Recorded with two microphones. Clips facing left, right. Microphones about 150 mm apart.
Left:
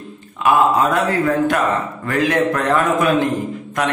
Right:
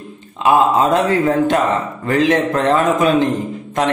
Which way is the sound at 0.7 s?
25° right (ahead or behind).